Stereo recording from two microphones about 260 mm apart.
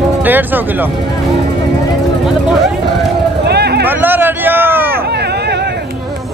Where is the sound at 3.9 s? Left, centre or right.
Centre.